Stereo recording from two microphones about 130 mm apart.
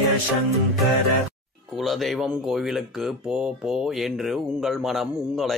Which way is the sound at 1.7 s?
Centre (ahead or behind).